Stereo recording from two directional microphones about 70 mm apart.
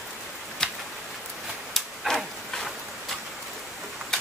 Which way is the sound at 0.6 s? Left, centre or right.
Centre.